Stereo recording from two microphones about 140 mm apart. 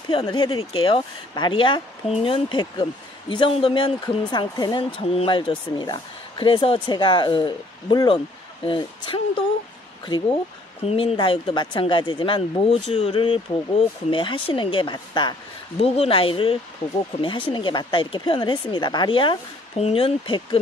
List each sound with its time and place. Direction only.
0.1 s speech: 35° left (ahead or behind)